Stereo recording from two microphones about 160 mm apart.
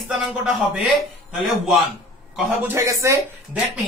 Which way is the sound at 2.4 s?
15° right (ahead or behind).